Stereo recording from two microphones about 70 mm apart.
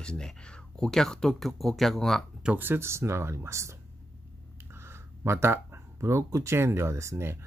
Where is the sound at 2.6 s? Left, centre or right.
Right.